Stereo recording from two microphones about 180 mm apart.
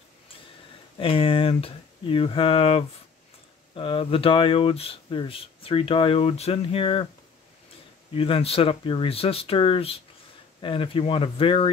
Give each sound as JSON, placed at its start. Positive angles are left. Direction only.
{"t": 0.9, "sound": "speech", "side_deg": 30}
{"t": 8.1, "sound": "speech", "side_deg": 30}